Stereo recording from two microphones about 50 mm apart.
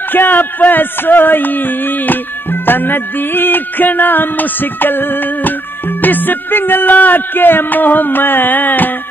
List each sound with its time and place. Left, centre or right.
0.1 s speech: left